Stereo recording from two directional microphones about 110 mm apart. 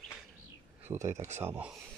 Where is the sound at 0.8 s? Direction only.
25° right (ahead or behind).